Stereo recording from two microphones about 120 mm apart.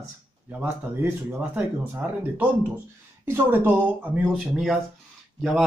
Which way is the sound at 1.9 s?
15° right (ahead or behind).